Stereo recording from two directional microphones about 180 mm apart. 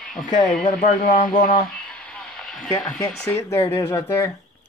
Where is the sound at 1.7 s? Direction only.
5° left (ahead or behind).